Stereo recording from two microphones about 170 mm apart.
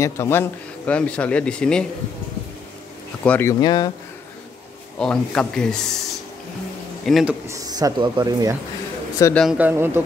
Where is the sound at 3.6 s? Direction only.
25° left (ahead or behind).